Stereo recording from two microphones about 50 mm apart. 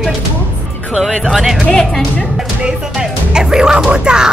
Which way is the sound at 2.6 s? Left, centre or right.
Centre.